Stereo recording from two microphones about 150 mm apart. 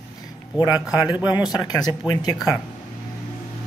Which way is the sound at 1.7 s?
25° left (ahead or behind).